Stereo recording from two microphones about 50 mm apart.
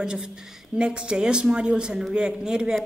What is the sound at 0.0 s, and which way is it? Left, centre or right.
A woman's voice, centre.